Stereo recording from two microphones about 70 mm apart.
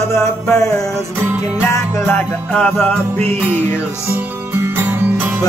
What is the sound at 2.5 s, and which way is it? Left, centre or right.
Music, centre.